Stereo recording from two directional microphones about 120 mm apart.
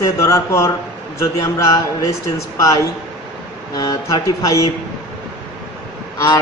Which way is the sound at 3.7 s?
30° left (ahead or behind).